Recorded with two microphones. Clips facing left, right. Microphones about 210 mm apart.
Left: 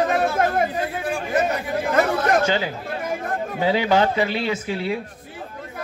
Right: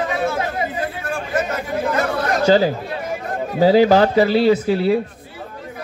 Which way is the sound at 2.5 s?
35° right (ahead or behind).